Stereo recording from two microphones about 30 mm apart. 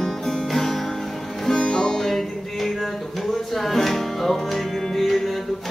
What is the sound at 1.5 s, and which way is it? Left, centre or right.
Music, left.